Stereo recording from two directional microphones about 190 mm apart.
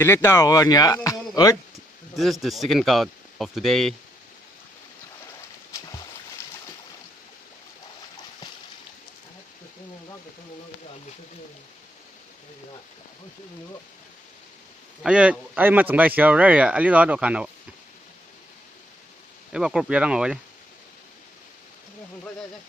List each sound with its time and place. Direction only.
0.0 s speech: 15° left (ahead or behind)
2.1 s speech: centre (ahead or behind)
5.7 s boat: 15° left (ahead or behind)
15.0 s speech: 5° right (ahead or behind)
19.5 s speech: 5° right (ahead or behind)